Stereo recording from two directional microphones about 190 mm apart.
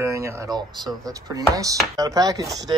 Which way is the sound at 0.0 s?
15° right (ahead or behind).